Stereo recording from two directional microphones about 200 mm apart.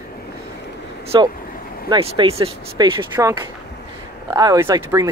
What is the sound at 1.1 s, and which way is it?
Speech, 20° right (ahead or behind).